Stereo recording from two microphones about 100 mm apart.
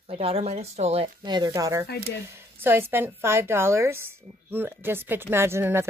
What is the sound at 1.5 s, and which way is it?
Speech, 35° right (ahead or behind).